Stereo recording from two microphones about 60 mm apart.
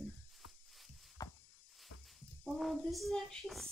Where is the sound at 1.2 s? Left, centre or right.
Left.